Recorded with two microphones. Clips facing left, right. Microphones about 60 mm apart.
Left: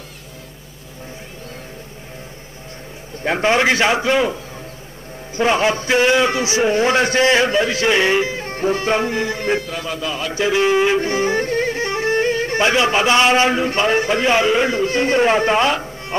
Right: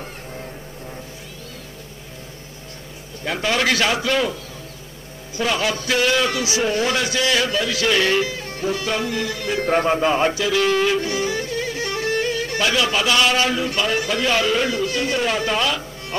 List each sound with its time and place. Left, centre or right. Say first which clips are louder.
3.3 s a man's voice: left 5 dB; left
9.6 s a man's voice: right 7 dB; right
10.3 s speech: left 3 dB; left